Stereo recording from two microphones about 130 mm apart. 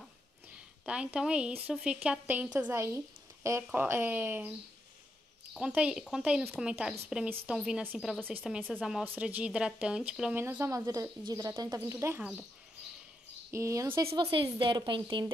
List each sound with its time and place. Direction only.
0.8 s speech: 10° right (ahead or behind)
5.7 s speech: 10° right (ahead or behind)
9.0 s speech: 15° right (ahead or behind)
10.4 s speech: 20° right (ahead or behind)
13.5 s speech: 25° right (ahead or behind)
14.1 s a woman's voice: 40° right (ahead or behind)